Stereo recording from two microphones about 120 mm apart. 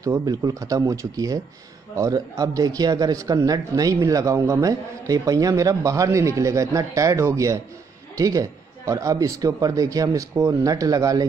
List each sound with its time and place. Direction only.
0.2 s speech: 30° right (ahead or behind)